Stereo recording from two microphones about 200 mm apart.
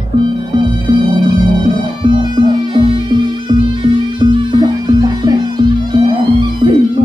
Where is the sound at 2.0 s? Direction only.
25° right (ahead or behind).